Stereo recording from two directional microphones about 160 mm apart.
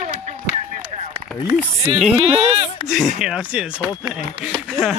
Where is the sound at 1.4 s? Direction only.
20° right (ahead or behind).